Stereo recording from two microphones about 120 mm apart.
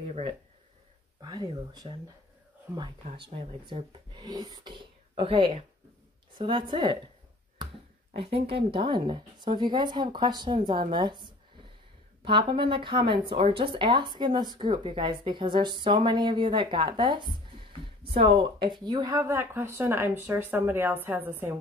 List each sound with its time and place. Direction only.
1.2 s speech: 40° right (ahead or behind)
5.2 s speech: 50° right (ahead or behind)
8.1 s speech: 55° right (ahead or behind); by 21.5 s 20° right (ahead or behind)